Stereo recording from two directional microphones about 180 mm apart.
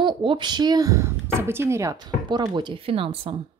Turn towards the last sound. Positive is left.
turn(degrees=-30)  # may be behind; listen again after turning